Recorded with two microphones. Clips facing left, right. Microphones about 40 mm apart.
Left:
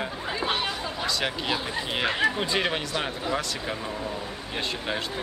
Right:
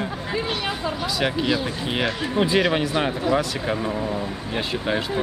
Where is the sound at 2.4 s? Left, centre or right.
Centre.